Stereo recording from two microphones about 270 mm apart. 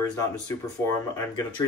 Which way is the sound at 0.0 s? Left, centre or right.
Centre.